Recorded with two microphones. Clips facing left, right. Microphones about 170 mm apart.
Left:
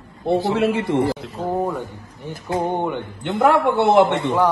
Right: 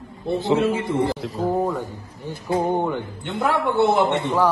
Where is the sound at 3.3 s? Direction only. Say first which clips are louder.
Left 4 dB; 65° left (ahead or behind).